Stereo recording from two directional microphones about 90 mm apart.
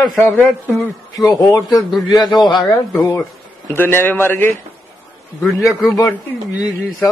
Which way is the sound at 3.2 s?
25° left (ahead or behind).